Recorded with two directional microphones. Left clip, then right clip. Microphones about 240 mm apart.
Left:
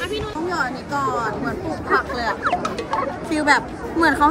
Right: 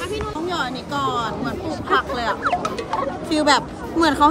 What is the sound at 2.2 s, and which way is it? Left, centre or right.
Speech, centre.